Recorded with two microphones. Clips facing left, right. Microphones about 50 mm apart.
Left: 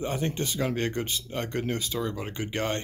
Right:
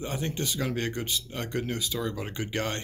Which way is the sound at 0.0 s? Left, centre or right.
Left.